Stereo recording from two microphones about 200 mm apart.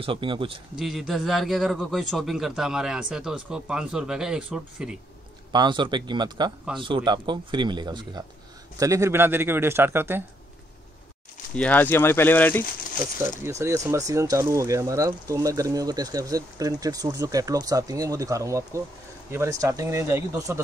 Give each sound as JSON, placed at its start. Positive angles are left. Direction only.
{"t": 0.0, "sound": "speech", "side_deg": -25}
{"t": 0.7, "sound": "a man's voice", "side_deg": 0}
{"t": 5.5, "sound": "speech", "side_deg": -20}
{"t": 11.5, "sound": "speech", "side_deg": 5}
{"t": 13.2, "sound": "speech", "side_deg": -15}